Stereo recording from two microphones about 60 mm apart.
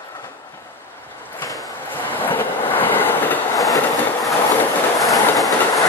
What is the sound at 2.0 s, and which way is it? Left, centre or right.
Train, left.